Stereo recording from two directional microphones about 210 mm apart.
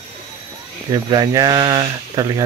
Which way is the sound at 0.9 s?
20° right (ahead or behind).